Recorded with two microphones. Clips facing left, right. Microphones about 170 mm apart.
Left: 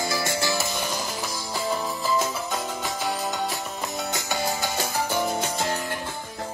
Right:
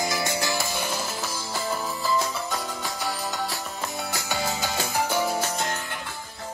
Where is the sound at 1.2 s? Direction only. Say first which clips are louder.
Left 1 dB; 15° left (ahead or behind).